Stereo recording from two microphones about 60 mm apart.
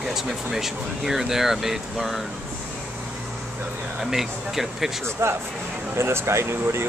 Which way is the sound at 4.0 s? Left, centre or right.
Centre.